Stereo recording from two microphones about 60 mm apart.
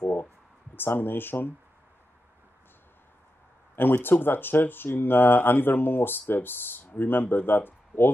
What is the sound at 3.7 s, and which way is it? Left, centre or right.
Speech, left.